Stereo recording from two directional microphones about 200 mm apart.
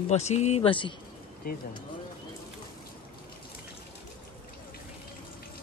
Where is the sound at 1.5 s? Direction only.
45° left (ahead or behind).